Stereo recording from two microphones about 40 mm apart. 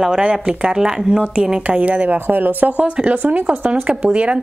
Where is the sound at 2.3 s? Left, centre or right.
Right.